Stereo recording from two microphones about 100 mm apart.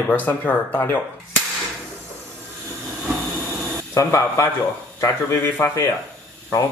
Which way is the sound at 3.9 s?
30° left (ahead or behind).